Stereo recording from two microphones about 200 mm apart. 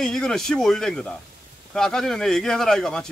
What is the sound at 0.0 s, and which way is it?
Speech, 5° left (ahead or behind).